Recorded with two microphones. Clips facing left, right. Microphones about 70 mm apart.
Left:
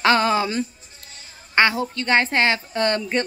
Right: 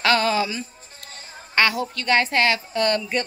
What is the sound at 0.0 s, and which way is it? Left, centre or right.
Music, left.